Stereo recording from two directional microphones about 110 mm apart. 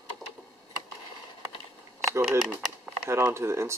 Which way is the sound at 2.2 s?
5° right (ahead or behind).